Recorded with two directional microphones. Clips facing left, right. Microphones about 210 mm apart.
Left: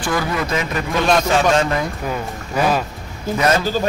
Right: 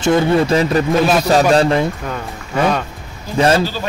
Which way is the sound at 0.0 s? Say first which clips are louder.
Right 8 dB; 25° right (ahead or behind).